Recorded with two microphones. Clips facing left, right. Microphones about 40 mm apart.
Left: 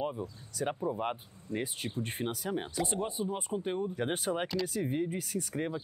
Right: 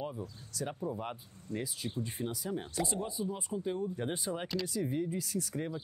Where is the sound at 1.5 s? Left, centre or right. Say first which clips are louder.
Left 2 dB; left.